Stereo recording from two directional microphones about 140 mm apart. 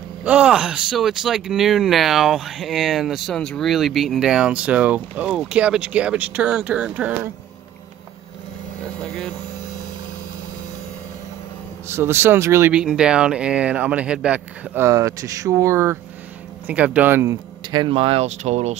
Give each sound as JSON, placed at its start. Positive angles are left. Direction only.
{"t": 0.2, "sound": "speech", "side_deg": -10}
{"t": 11.9, "sound": "speech", "side_deg": -15}
{"t": 12.7, "sound": "speech", "side_deg": -5}
{"t": 16.6, "sound": "speech", "side_deg": -10}
{"t": 17.6, "sound": "speech", "side_deg": -35}